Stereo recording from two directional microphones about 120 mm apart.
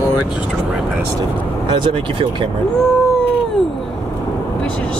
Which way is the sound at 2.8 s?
5° left (ahead or behind).